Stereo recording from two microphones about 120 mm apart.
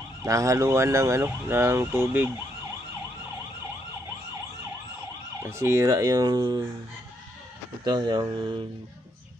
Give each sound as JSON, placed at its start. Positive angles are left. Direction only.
{"t": 0.2, "sound": "speech", "side_deg": -25}
{"t": 5.4, "sound": "speech", "side_deg": -20}
{"t": 7.8, "sound": "speech", "side_deg": -40}